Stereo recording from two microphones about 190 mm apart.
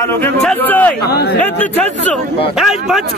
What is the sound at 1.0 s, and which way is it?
Speech, 55° left (ahead or behind).